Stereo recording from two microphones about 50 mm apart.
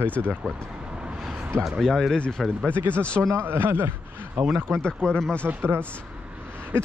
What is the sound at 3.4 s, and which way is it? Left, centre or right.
Speech, right.